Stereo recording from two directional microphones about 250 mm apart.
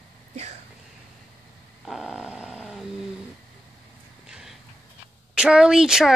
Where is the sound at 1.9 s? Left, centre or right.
Centre.